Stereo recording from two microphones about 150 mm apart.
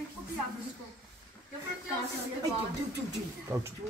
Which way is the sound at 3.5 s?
20° right (ahead or behind).